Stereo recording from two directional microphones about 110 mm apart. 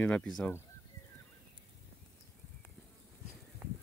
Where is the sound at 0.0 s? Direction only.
10° left (ahead or behind).